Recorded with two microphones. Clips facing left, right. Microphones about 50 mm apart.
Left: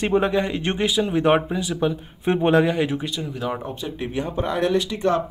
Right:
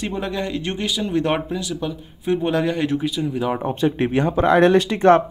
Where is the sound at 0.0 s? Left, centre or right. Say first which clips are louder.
Left 5 dB; left.